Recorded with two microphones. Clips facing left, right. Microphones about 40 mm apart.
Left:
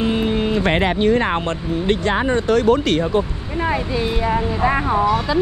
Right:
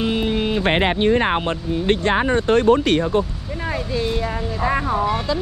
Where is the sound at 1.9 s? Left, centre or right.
Right.